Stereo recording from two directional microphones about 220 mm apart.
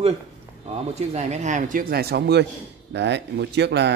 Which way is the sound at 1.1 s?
30° right (ahead or behind).